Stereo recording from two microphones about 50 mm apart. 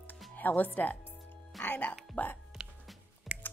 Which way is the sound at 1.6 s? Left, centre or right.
Left.